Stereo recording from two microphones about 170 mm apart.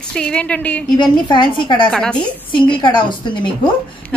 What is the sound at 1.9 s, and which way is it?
Speech, 5° left (ahead or behind).